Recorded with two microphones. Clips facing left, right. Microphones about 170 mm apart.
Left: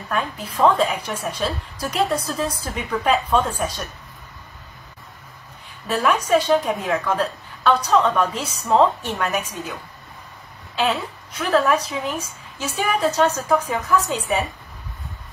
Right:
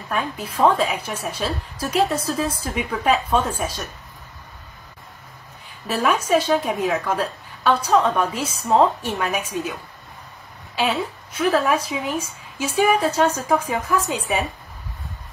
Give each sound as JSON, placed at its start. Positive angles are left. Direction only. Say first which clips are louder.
{"t": 0.6, "sound": "a woman's voice", "louder": "left 1 dB", "side_deg": -10}
{"t": 5.9, "sound": "a woman's voice", "louder": "left 1 dB", "side_deg": -10}
{"t": 10.8, "sound": "a woman's voice", "louder": "even", "side_deg": -10}